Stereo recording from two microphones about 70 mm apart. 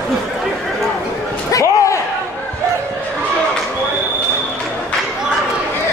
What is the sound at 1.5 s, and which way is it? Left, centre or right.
Slam, left.